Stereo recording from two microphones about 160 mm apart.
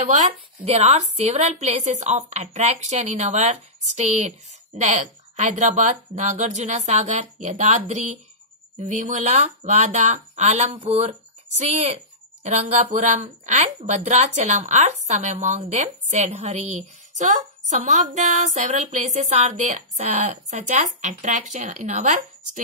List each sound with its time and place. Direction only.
0.0 s a woman's voice: 45° right (ahead or behind)